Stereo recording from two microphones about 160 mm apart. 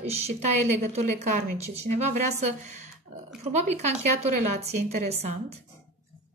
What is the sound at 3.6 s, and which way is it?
Speech, 45° right (ahead or behind).